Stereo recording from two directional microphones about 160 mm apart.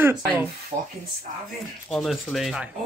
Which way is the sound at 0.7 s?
25° right (ahead or behind).